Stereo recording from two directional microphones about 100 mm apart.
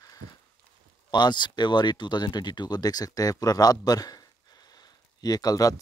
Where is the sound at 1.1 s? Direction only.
45° left (ahead or behind).